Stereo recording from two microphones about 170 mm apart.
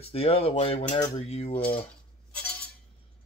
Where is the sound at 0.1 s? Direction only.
35° left (ahead or behind).